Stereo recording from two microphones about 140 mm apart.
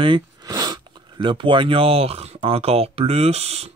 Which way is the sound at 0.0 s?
35° right (ahead or behind).